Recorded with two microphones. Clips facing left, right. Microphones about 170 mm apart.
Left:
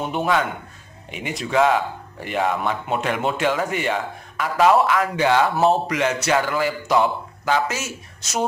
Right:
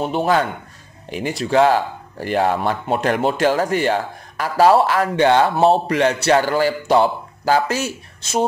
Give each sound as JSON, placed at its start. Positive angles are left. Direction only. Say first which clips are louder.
{"t": 0.0, "sound": "speech", "louder": "right 3 dB", "side_deg": -30}